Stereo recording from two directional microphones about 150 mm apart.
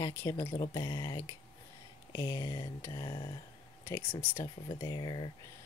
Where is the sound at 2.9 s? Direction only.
30° left (ahead or behind).